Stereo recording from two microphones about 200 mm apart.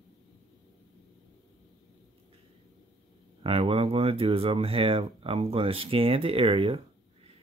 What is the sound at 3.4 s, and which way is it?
Speech, 30° right (ahead or behind).